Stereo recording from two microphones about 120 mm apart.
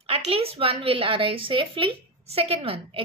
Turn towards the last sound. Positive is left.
turn(degrees=-50)  # may be behind; listen again after turning